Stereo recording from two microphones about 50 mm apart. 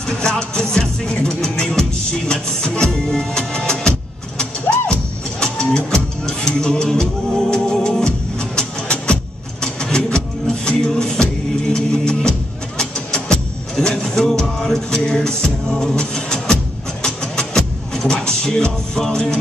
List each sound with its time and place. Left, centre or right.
0.0 s music: centre